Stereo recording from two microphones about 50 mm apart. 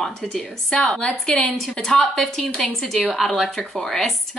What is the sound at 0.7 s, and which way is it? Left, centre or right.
A woman's voice, centre.